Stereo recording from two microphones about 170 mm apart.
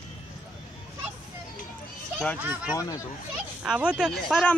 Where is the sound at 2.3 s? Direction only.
10° right (ahead or behind).